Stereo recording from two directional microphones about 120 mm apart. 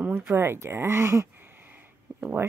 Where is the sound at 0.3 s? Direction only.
20° right (ahead or behind).